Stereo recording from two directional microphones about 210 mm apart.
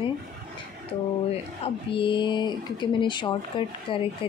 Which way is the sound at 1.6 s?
25° left (ahead or behind).